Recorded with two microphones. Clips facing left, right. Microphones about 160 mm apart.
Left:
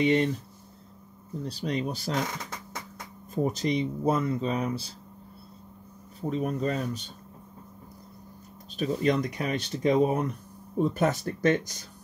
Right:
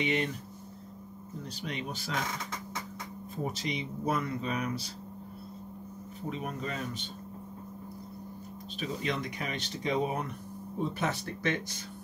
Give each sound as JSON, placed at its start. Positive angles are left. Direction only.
{"t": 0.0, "sound": "speech", "side_deg": 35}
{"t": 1.4, "sound": "speech", "side_deg": 35}
{"t": 3.6, "sound": "speech", "side_deg": 35}
{"t": 6.2, "sound": "speech", "side_deg": 40}
{"t": 8.7, "sound": "speech", "side_deg": 45}